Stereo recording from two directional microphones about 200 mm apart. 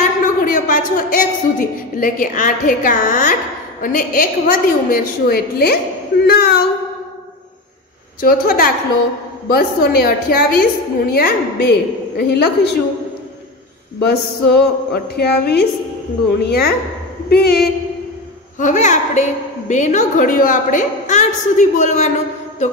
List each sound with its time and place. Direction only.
0.2 s a woman's voice: 40° left (ahead or behind)
8.2 s a woman's voice: 45° left (ahead or behind)
13.9 s a woman's voice: 55° left (ahead or behind)
18.6 s a woman's voice: 40° left (ahead or behind)